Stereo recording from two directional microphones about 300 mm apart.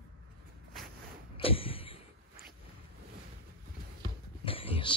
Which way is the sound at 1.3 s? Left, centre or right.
Centre.